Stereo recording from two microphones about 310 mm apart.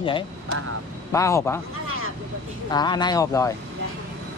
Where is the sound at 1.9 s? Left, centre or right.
Right.